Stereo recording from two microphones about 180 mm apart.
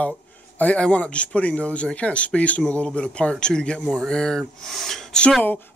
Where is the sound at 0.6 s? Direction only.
5° left (ahead or behind).